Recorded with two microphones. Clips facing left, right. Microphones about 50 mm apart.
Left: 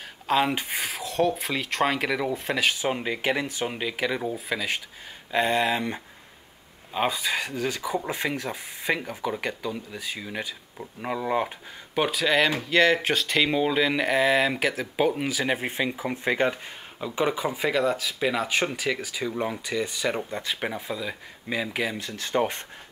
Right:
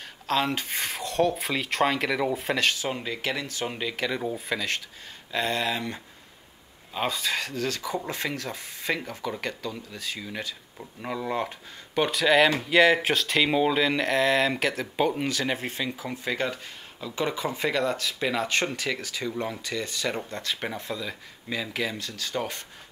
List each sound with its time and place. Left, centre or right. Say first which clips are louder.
0.3 s speech: left 3 dB; centre
2.7 s speech: left 3 dB; centre
3.6 s speech: right 1 dB; centre; by 22.6 s left